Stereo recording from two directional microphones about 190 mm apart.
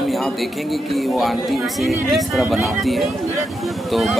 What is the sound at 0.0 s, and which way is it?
Speech, centre (ahead or behind).